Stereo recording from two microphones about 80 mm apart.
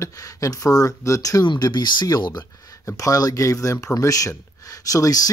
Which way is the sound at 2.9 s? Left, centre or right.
Left.